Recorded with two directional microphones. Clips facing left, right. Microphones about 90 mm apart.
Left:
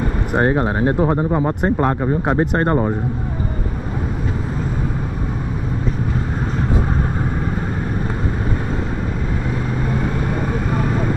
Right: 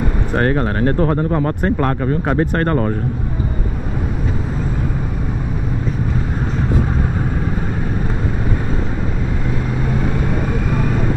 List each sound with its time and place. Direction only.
0.3 s speech: 20° left (ahead or behind)